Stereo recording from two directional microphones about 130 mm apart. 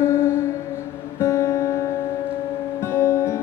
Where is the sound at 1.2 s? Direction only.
20° left (ahead or behind).